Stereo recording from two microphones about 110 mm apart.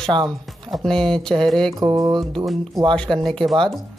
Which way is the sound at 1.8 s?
35° right (ahead or behind).